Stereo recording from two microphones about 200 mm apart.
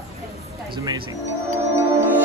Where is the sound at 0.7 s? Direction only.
15° right (ahead or behind).